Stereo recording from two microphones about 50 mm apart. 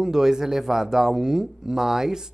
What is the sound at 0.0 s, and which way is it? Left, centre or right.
Speech, centre.